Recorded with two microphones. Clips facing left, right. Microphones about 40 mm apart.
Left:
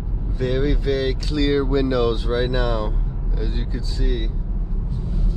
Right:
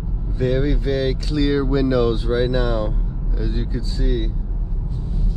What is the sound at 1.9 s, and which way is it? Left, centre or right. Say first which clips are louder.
Speech: right 2 dB; left.